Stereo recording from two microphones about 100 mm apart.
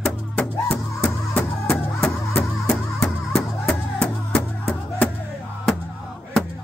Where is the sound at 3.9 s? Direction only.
15° left (ahead or behind).